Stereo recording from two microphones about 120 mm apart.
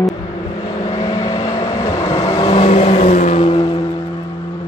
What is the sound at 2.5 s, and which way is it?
Vehicle, 65° left (ahead or behind).